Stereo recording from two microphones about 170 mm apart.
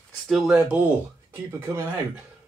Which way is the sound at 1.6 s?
15° right (ahead or behind).